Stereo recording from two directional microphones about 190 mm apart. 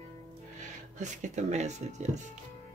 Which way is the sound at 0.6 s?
40° right (ahead or behind).